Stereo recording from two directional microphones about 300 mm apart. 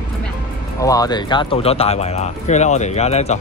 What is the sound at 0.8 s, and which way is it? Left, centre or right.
Speech, centre.